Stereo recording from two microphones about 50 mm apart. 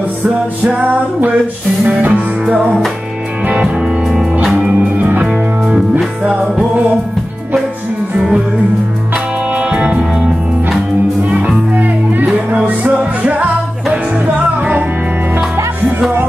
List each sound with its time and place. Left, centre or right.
1.9 s music: right
3.6 s music: centre
4.9 s music: right
9.6 s music: right
11.2 s music: right